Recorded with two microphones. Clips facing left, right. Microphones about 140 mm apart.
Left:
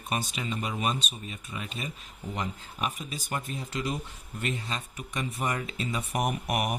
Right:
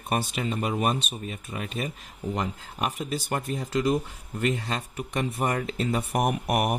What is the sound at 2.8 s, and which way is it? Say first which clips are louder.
Speech: right 5 dB; 70° right (ahead or behind).